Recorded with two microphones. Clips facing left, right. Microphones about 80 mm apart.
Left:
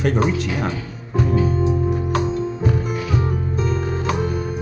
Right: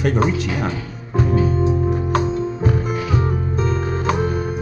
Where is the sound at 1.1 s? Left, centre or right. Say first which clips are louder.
Right 1 dB; right.